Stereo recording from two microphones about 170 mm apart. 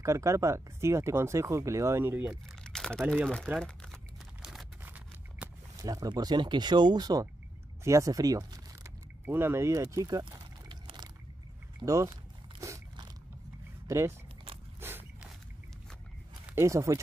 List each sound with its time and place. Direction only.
0.0 s speech: 15° right (ahead or behind)
2.6 s crumpling: 5° left (ahead or behind)
5.9 s speech: 20° right (ahead or behind)
7.8 s a sound: 20° right (ahead or behind)
11.8 s speech: 20° right (ahead or behind)
12.5 s biting: 20° right (ahead or behind)
13.8 s speech: 15° right (ahead or behind)
14.8 s a sound: 15° right (ahead or behind)
16.4 s speech: 15° right (ahead or behind)